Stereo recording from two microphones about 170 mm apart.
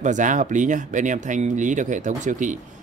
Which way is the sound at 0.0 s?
45° right (ahead or behind).